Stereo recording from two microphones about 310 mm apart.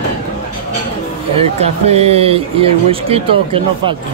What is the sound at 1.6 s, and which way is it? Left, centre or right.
Speech, centre.